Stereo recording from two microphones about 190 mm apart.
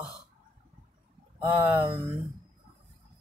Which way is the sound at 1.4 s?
10° right (ahead or behind).